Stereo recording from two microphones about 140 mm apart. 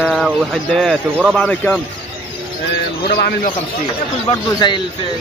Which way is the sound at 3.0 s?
90° left.